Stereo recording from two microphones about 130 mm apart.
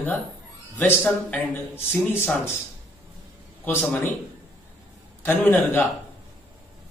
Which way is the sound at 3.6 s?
15° left (ahead or behind).